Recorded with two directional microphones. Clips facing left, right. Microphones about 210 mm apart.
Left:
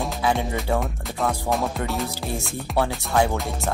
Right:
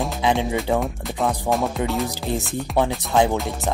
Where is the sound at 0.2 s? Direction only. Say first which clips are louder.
Right 3 dB; 20° right (ahead or behind).